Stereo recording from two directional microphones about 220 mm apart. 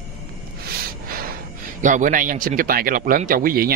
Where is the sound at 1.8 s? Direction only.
35° right (ahead or behind).